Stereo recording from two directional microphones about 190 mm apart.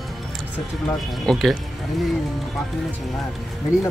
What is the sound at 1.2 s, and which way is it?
Speech, centre (ahead or behind).